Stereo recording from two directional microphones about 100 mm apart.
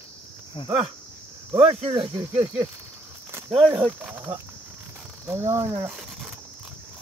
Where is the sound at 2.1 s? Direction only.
30° right (ahead or behind).